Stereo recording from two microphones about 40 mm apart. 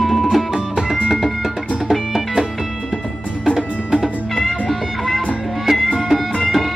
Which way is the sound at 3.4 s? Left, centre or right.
Centre.